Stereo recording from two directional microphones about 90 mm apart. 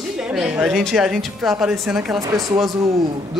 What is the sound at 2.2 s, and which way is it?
Speech, 40° right (ahead or behind).